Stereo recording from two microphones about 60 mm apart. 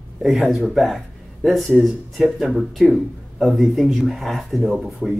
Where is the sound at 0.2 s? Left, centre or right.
Centre.